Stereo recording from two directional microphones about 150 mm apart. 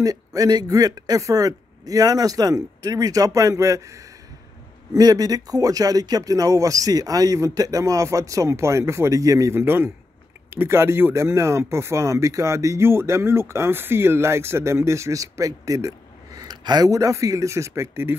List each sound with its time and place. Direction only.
0.0 s speech: 25° right (ahead or behind)